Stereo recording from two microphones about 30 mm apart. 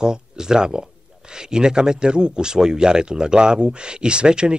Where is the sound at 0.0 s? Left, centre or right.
Right.